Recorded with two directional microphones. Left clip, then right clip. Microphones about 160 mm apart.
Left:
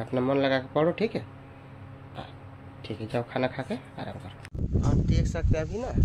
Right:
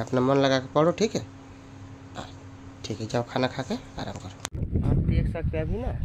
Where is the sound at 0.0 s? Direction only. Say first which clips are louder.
Right 3 dB; 40° right (ahead or behind).